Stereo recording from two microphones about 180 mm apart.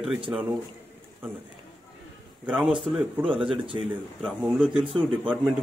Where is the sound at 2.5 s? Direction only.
5° right (ahead or behind).